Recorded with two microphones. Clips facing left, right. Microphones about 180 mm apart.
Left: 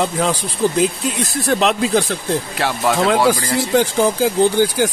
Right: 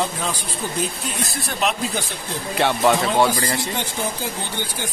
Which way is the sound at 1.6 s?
90° left.